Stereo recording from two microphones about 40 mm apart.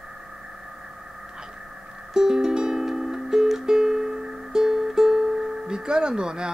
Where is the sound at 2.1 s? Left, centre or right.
Centre.